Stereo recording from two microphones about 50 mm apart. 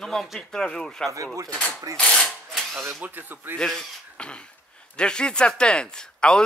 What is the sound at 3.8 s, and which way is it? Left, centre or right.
Speech, left.